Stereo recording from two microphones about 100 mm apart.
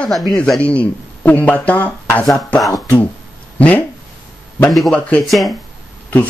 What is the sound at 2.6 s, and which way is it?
Speech, 35° left (ahead or behind).